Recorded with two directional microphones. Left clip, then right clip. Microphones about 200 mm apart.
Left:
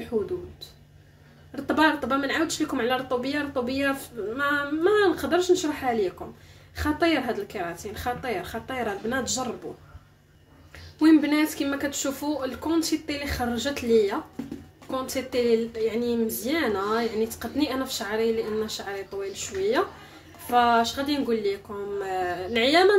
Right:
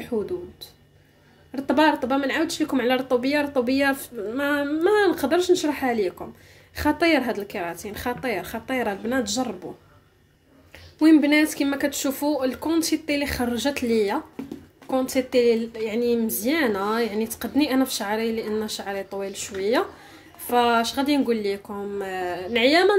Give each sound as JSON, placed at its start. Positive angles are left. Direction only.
{"t": 1.5, "sound": "speech", "side_deg": -30}
{"t": 11.0, "sound": "speech", "side_deg": -25}